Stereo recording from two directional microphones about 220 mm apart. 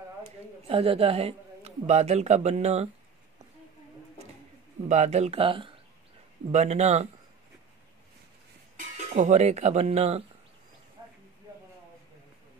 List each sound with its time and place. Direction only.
0.7 s speech: 25° right (ahead or behind)
4.8 s speech: 30° right (ahead or behind)
8.7 s speech: 35° right (ahead or behind)